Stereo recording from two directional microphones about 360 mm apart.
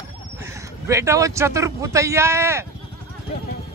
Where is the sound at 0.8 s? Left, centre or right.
Centre.